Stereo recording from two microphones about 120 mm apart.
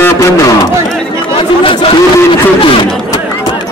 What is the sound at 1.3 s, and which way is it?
Speech, 45° left (ahead or behind).